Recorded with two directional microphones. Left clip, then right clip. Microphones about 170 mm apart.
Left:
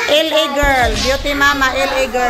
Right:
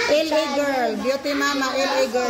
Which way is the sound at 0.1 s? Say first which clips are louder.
Left 8 dB; 45° left (ahead or behind).